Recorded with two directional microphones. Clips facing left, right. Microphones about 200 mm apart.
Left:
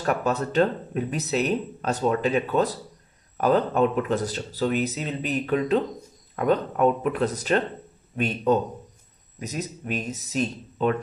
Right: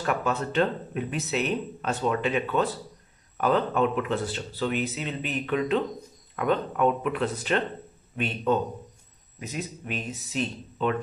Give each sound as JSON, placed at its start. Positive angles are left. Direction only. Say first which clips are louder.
{"t": 0.0, "sound": "speech", "louder": "left 3 dB", "side_deg": 40}
{"t": 9.4, "sound": "speech", "louder": "left 3 dB", "side_deg": 40}